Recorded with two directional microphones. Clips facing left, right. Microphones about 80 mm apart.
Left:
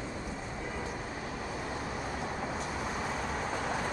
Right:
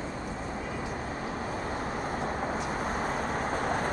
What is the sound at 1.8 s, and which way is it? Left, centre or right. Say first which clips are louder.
Vehicle: right 4 dB; right.